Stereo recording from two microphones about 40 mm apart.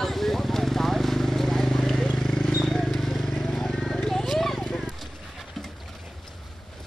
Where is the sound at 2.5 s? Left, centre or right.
Centre.